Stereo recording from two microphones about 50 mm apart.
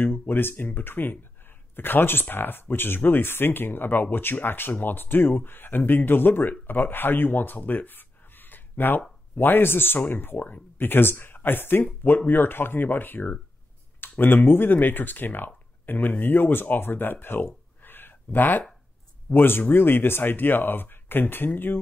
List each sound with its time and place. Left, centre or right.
0.3 s speech: left